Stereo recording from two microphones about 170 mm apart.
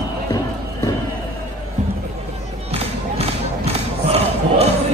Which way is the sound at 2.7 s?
35° right (ahead or behind).